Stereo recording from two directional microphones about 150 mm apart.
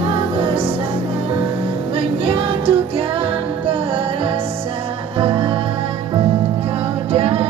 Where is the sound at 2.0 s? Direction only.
40° right (ahead or behind).